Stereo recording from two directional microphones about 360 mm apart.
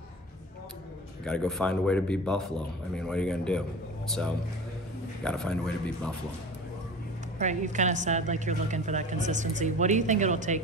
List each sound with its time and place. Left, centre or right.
1.2 s speech: centre
5.2 s speech: centre
7.3 s a woman's voice: centre